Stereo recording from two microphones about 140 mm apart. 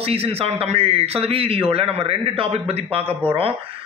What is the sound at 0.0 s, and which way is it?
Speech, 45° right (ahead or behind).